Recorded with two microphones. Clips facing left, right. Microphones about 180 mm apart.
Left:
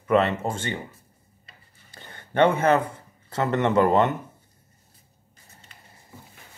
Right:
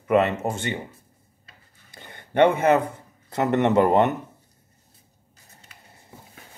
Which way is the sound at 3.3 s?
20° right (ahead or behind).